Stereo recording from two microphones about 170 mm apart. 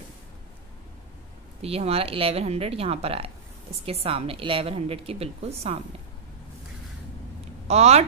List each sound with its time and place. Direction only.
1.6 s a woman's voice: 35° right (ahead or behind)
7.6 s speech: 40° right (ahead or behind)